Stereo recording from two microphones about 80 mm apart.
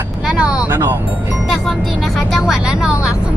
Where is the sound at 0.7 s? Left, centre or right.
Right.